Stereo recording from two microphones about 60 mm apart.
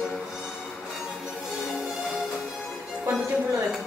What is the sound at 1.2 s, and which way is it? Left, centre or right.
Music, centre.